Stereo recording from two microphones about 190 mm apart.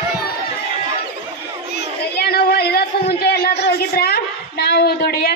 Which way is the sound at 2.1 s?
55° left (ahead or behind).